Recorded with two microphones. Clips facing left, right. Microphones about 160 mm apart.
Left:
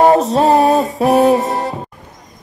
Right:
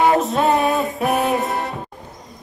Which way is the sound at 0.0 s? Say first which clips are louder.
Left 5 dB; 35° left (ahead or behind).